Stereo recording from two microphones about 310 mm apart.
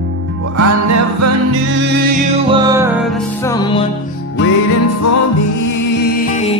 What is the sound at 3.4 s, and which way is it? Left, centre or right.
Music, centre.